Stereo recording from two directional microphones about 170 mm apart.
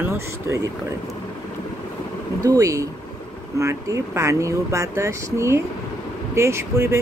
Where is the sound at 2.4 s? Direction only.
20° right (ahead or behind).